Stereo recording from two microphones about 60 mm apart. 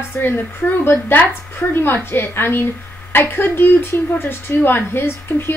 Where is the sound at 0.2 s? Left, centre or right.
Left.